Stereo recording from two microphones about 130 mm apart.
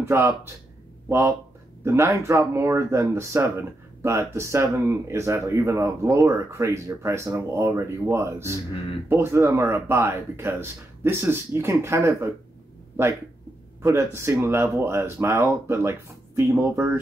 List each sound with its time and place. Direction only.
0.0 s speech: 20° right (ahead or behind)
13.8 s speech: 20° right (ahead or behind)